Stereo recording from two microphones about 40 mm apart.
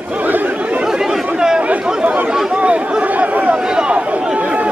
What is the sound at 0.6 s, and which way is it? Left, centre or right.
Chatter, right.